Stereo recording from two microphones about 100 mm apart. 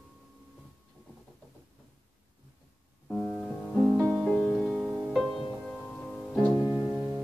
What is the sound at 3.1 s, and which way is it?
Music, 5° left (ahead or behind).